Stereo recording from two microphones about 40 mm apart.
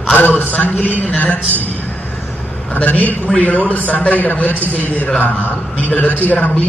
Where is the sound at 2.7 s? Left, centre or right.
Left.